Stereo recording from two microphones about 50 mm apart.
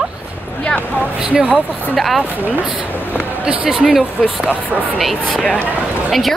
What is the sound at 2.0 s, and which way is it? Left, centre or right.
Speech, centre.